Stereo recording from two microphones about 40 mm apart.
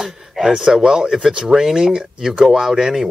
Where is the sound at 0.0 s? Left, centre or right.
Centre.